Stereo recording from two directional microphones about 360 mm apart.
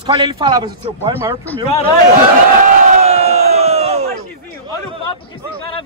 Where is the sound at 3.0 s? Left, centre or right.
Centre.